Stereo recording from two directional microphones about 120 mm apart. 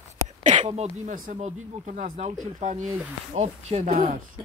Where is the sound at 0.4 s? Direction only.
85° right.